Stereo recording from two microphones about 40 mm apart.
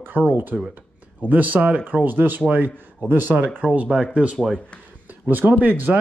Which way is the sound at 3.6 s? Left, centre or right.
Right.